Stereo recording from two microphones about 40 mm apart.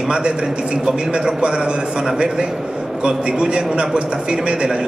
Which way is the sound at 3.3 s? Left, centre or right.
Right.